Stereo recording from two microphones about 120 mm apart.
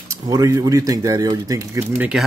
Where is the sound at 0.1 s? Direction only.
30° right (ahead or behind).